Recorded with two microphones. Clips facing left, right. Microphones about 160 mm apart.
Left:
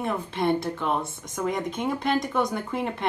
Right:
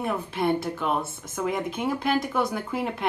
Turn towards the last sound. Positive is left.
turn(degrees=-10)  # may be behind; listen again after turning